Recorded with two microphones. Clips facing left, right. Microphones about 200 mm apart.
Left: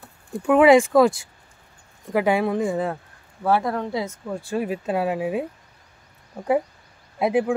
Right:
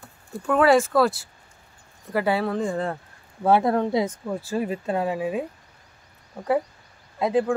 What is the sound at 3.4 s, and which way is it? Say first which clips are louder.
Speech: right 3 dB; 25° right (ahead or behind).